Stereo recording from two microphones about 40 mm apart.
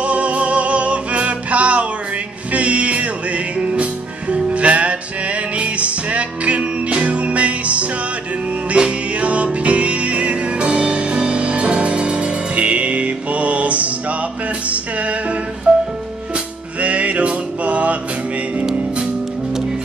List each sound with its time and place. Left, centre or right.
0.0 s music: right
15.7 s music: right